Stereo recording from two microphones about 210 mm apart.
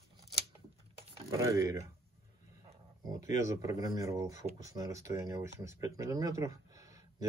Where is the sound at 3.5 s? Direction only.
15° right (ahead or behind).